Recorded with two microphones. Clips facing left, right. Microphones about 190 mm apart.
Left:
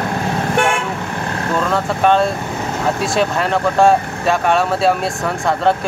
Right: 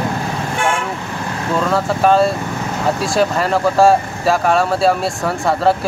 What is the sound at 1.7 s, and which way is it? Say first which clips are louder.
Speech: right 1 dB; 5° right (ahead or behind).